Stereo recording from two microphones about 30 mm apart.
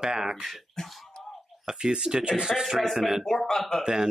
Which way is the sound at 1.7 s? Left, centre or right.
Right.